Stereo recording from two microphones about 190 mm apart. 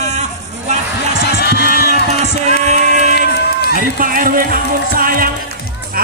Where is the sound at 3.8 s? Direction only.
45° right (ahead or behind).